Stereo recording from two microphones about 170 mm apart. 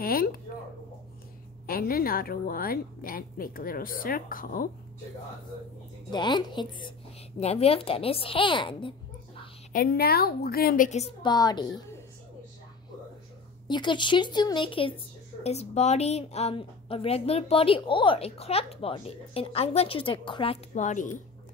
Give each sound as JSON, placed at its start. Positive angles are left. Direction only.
{"t": 0.0, "sound": "a woman's voice", "side_deg": 60}
{"t": 1.7, "sound": "a woman's voice", "side_deg": 60}
{"t": 6.1, "sound": "a woman's voice", "side_deg": 25}
{"t": 7.3, "sound": "a woman's voice", "side_deg": 35}
{"t": 9.7, "sound": "a woman's voice", "side_deg": 60}
{"t": 11.2, "sound": "a woman's voice", "side_deg": 25}
{"t": 13.7, "sound": "a woman's voice", "side_deg": 25}
{"t": 20.7, "sound": "speech", "side_deg": 45}